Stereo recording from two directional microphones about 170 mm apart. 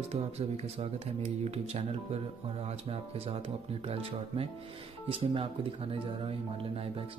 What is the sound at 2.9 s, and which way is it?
Speech, 35° right (ahead or behind).